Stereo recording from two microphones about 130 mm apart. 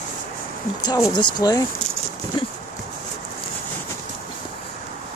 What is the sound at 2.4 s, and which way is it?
Clip-clop, 40° left (ahead or behind).